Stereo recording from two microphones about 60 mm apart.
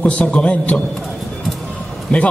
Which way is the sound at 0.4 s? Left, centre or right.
Centre.